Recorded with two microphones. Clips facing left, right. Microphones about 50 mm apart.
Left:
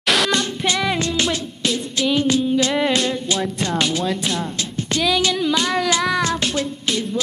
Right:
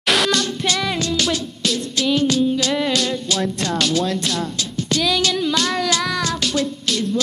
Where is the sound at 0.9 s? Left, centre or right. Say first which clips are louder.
Even; left.